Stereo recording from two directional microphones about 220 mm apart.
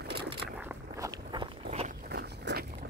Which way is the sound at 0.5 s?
10° right (ahead or behind).